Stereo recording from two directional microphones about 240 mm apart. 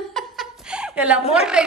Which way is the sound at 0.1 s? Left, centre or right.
Centre.